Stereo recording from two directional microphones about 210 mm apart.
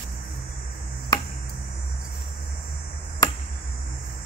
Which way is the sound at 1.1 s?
20° left (ahead or behind).